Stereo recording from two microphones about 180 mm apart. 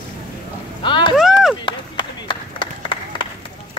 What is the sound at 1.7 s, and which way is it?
Run, 25° left (ahead or behind).